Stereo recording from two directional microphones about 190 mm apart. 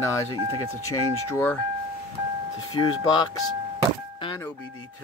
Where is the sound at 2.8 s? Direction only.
25° left (ahead or behind).